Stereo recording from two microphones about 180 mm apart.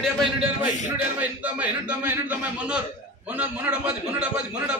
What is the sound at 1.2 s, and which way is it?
A man's voice, 10° right (ahead or behind).